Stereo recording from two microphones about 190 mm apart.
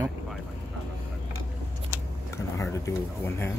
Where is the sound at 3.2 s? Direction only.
10° left (ahead or behind).